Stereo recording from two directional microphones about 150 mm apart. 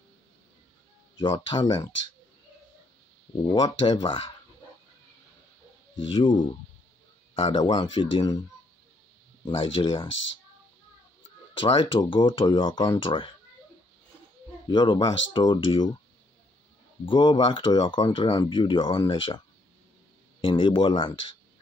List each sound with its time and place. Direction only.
1.5 s speech: 30° left (ahead or behind)
3.5 s speech: 30° left (ahead or behind)
5.9 s speech: 35° left (ahead or behind)
11.5 s speech: 35° left (ahead or behind)
14.7 s speech: 30° left (ahead or behind)
17.0 s speech: 30° left (ahead or behind)
20.4 s speech: 35° left (ahead or behind)